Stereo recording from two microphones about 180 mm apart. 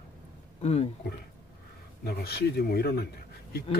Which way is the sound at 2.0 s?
60° left (ahead or behind).